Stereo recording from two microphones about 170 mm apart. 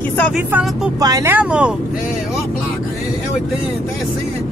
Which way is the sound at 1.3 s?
10° right (ahead or behind).